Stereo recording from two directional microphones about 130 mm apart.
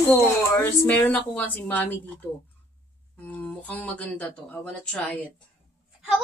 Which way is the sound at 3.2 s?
10° left (ahead or behind).